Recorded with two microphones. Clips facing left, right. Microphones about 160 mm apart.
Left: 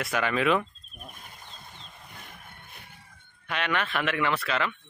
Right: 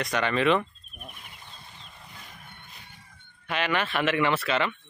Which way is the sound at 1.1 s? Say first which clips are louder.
Left 1 dB; 45° left (ahead or behind).